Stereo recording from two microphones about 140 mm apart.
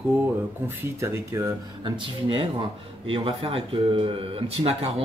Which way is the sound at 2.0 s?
40° right (ahead or behind).